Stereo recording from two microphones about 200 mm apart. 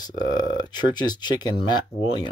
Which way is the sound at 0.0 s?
20° left (ahead or behind).